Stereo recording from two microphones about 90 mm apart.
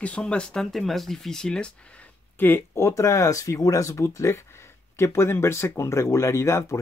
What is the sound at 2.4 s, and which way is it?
Speech, 25° left (ahead or behind).